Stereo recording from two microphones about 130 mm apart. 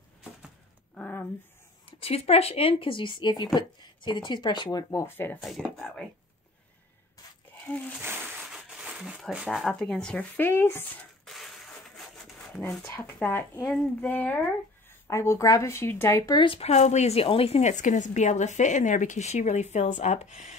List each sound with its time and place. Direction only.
0.9 s a sound: 10° left (ahead or behind)
1.9 s speech: 50° left (ahead or behind)
4.6 s speech: 25° left (ahead or behind)
5.8 s speech: 5° left (ahead or behind)
7.7 s speech: 15° left (ahead or behind)
8.5 s a sound: 5° right (ahead or behind)
9.2 s speech: centre (ahead or behind); by 10.8 s 15° left (ahead or behind)
11.2 s crushing: centre (ahead or behind)
12.6 s speech: 20° left (ahead or behind)
16.4 s a woman's voice: 55° left (ahead or behind)